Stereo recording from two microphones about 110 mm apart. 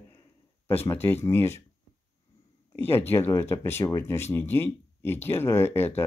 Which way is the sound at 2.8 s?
20° left (ahead or behind).